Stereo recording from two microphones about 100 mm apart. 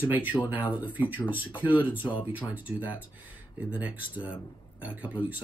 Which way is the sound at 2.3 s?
15° right (ahead or behind).